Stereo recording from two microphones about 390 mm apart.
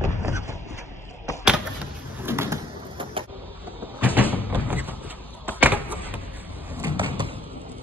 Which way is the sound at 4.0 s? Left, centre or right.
Centre.